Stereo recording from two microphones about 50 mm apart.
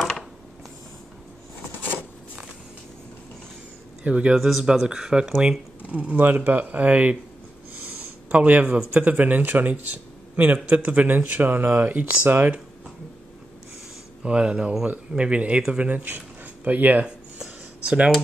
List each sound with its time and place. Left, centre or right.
4.0 s speech: right
4.4 s speech: centre
4.6 s speech: centre
5.8 s speech: right
6.3 s speech: right
6.6 s speech: right
7.8 s a sound: right
8.9 s a man's voice: right
14.2 s speech: right
15.9 s a man's voice: right
17.0 s a sound: right